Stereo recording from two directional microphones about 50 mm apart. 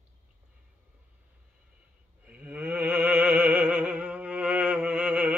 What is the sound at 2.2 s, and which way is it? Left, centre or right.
Music, right.